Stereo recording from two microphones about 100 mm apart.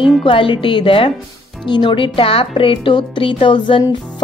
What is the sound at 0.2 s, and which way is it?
A woman's voice, 60° left (ahead or behind).